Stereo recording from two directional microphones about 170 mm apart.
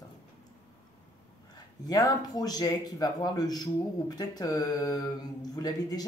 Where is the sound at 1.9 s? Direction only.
20° left (ahead or behind).